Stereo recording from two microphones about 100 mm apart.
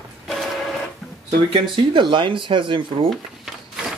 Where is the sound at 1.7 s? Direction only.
55° right (ahead or behind).